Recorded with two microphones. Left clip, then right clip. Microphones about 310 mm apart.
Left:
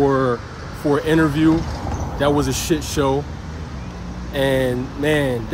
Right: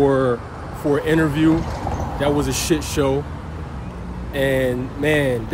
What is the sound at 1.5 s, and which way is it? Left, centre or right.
Vehicle, right.